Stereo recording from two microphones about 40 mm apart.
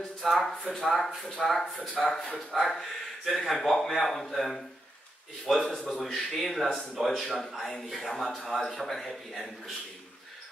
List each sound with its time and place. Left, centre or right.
0.4 s a man's voice: centre